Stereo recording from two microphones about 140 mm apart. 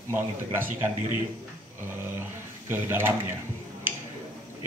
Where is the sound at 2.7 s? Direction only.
15° right (ahead or behind).